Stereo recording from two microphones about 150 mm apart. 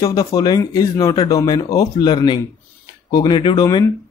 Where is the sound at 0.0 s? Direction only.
25° left (ahead or behind).